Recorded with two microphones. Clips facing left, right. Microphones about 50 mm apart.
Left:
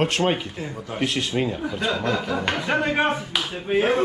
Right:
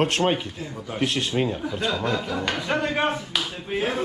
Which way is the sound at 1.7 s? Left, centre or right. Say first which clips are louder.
Left 2 dB; centre.